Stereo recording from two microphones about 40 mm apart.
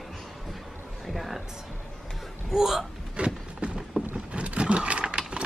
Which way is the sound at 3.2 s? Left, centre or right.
Right.